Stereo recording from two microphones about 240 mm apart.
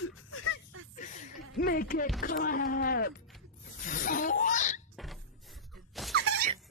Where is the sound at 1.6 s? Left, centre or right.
Left.